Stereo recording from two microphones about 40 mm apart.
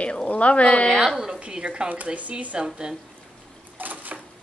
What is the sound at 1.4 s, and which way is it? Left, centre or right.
Speech, right.